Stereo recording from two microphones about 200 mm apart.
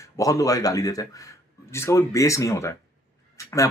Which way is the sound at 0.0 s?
15° left (ahead or behind).